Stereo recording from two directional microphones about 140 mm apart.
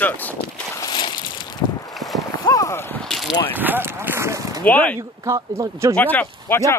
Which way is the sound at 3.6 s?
15° right (ahead or behind).